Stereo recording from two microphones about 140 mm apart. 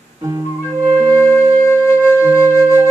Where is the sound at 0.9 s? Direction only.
20° left (ahead or behind).